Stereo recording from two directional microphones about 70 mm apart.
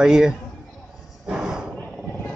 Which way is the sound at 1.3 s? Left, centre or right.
Centre.